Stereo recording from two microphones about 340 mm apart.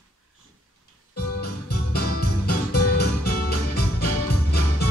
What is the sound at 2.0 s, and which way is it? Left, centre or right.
Music, left.